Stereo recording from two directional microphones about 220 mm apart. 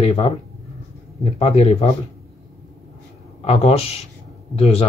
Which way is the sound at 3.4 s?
25° left (ahead or behind).